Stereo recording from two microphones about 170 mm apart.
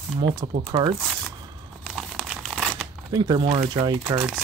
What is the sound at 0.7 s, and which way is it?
Speech, 35° right (ahead or behind).